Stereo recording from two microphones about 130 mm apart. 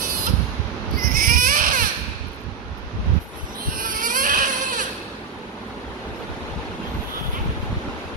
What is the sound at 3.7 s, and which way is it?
Baby cry, 90° right.